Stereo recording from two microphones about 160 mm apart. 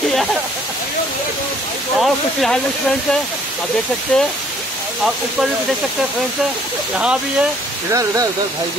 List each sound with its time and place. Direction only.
0.1 s waterfall: centre (ahead or behind)
2.0 s speech: centre (ahead or behind)
4.1 s speech: 10° left (ahead or behind)
7.0 s speech: 5° right (ahead or behind)
7.9 s speech: 20° right (ahead or behind)